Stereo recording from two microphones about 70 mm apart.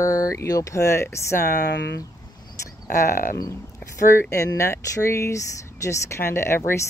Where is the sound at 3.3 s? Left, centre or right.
Left.